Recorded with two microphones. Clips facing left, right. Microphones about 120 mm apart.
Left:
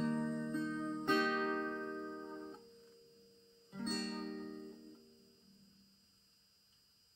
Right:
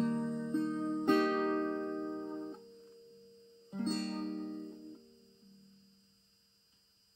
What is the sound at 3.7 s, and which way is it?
Music, 40° right (ahead or behind).